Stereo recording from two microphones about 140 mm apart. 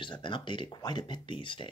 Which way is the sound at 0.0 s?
35° left (ahead or behind).